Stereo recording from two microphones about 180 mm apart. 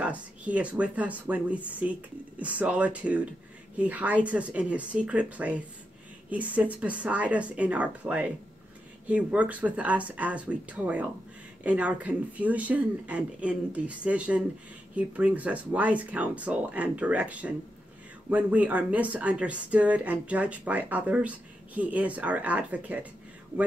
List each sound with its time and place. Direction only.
0.0 s speech: 10° right (ahead or behind)